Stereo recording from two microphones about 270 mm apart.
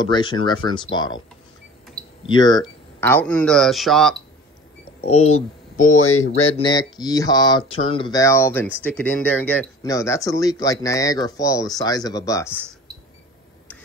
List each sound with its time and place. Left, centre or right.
0.0 s speech: centre
2.2 s speech: centre
5.3 s speech: left
12.4 s a sound: centre